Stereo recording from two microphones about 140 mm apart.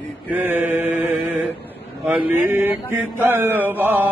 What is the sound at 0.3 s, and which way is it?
Mantra, 15° right (ahead or behind).